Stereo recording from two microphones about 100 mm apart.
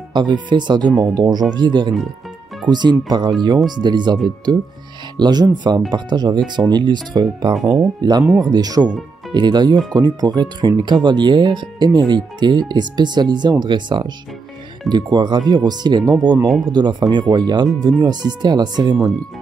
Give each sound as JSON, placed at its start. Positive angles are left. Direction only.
{"t": 0.1, "sound": "speech", "side_deg": -50}